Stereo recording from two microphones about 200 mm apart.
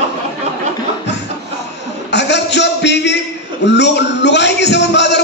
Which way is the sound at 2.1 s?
60° left (ahead or behind).